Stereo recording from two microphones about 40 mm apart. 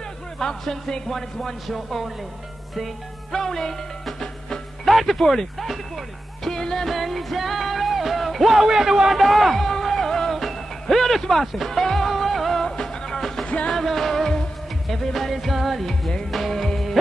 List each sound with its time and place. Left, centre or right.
0.4 s speech: centre
1.7 s music: centre
4.8 s speech: centre
7.0 s music: centre
8.6 s speech: centre
9.1 s music: centre
12.6 s music: centre